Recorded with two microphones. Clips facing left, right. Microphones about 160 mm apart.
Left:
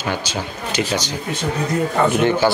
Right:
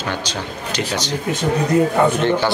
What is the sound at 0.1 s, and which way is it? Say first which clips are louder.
Speech: left 1 dB; 5° left (ahead or behind).